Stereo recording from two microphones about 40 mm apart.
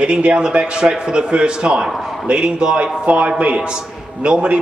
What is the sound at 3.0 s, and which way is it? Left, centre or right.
Speech, right.